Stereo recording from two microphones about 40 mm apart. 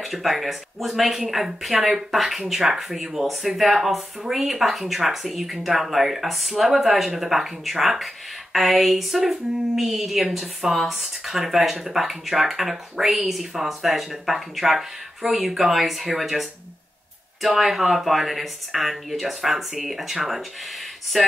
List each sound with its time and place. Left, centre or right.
0.0 s speech: centre
1.9 s speech: centre
2.1 s speech: centre